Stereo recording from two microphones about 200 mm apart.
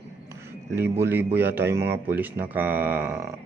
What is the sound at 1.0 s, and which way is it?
Speech, 10° right (ahead or behind).